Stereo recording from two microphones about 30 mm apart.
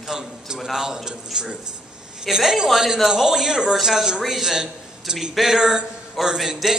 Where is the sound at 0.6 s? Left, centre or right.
Centre.